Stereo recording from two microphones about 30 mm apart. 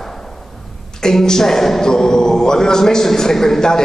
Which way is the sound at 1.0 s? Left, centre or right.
Left.